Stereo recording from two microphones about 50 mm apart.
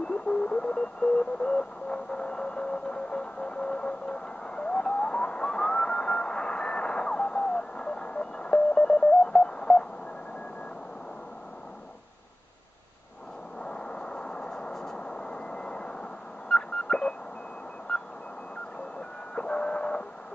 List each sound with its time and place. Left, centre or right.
0.0 s sidetone: left
13.6 s vehicle: left
15.0 s a sound: left
17.9 s vehicle: centre